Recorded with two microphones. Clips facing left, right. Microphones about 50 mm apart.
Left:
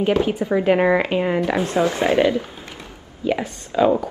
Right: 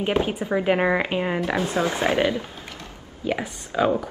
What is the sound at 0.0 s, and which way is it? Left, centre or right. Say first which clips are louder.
Speech: left 4 dB; right.